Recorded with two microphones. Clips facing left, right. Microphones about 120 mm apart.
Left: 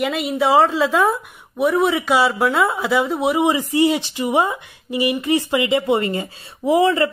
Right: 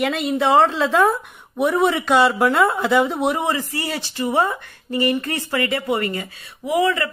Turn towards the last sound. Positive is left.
turn(degrees=30)  # may be behind; listen again after turning